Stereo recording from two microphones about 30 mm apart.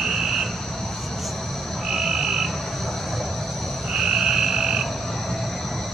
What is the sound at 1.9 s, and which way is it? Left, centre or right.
Frog, centre.